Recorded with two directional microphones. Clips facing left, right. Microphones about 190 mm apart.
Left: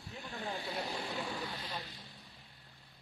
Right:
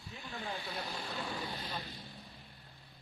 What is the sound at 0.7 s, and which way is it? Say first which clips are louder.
Speech: left 2 dB; 20° left (ahead or behind).